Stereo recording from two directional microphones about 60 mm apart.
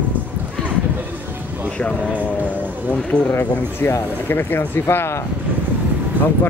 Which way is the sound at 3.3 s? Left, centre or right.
Left.